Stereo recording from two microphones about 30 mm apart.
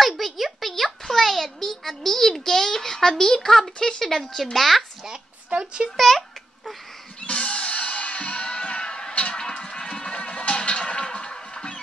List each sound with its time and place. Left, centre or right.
0.0 s a sound: centre
4.0 s speech: centre
5.5 s a sound: right
5.9 s babbling: centre
7.2 s music: left
9.4 s run: left
10.9 s music: left